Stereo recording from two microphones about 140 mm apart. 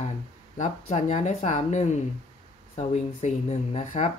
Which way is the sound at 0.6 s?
60° left (ahead or behind).